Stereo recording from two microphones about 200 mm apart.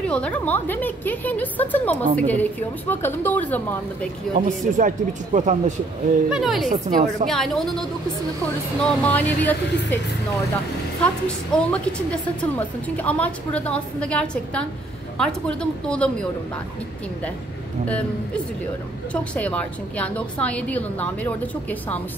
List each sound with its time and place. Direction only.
0.0 s a woman's voice: 5° left (ahead or behind)
4.4 s speech: 40° right (ahead or behind)
6.3 s a woman's voice: centre (ahead or behind)
6.7 s speech: 40° right (ahead or behind)
7.2 s a woman's voice: centre (ahead or behind)
8.8 s a woman's voice: 5° left (ahead or behind)
11.0 s a woman's voice: 5° left (ahead or behind)
17.8 s a woman's voice: 5° left (ahead or behind)